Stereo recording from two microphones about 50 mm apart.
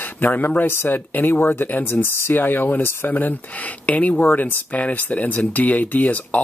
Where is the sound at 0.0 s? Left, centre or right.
Left.